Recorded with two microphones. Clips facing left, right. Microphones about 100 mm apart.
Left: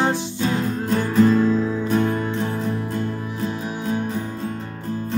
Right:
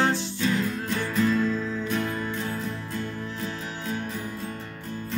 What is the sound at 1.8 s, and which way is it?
Music, 40° left (ahead or behind).